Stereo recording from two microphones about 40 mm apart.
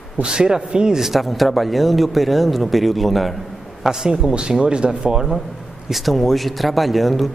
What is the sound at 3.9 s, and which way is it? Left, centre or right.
Speech, centre.